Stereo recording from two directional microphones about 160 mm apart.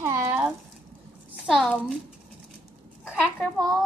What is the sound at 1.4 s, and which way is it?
Speech, centre (ahead or behind).